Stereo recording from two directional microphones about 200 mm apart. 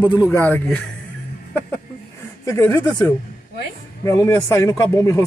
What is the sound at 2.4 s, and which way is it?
Speech, 15° left (ahead or behind).